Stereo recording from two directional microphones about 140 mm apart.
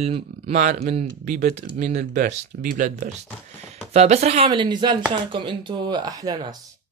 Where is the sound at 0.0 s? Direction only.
50° right (ahead or behind).